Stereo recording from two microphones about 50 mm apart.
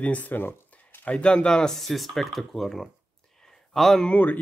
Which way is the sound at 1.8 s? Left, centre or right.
Centre.